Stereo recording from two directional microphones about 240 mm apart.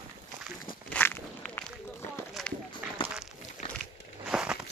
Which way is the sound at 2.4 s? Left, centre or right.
Centre.